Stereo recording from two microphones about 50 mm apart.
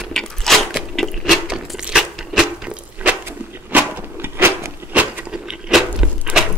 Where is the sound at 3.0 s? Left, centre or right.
Right.